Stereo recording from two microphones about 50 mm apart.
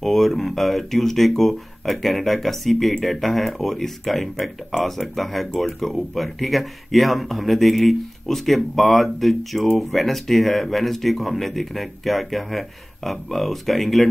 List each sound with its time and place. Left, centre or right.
0.0 s speech: centre